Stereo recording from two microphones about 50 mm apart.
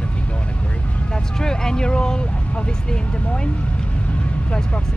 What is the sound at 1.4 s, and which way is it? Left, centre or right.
Speech, centre.